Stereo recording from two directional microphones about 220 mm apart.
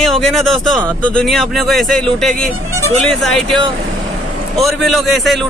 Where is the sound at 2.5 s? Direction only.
75° right (ahead or behind).